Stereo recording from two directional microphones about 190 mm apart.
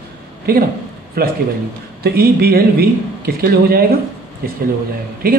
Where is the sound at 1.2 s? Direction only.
50° right (ahead or behind).